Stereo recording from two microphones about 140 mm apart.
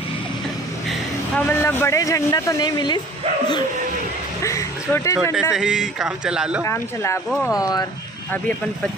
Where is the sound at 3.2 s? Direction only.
45° right (ahead or behind).